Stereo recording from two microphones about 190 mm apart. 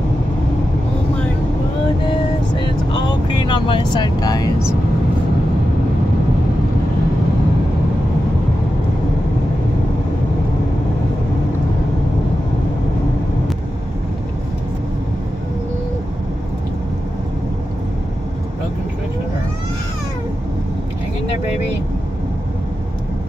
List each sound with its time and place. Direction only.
2.6 s vehicle: 25° left (ahead or behind)